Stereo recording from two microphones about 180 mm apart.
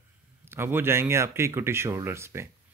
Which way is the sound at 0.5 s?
15° right (ahead or behind).